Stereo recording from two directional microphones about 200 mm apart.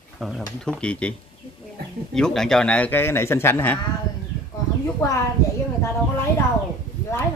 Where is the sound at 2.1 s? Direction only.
5° left (ahead or behind).